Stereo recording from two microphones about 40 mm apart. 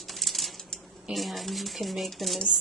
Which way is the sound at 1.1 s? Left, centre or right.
Centre.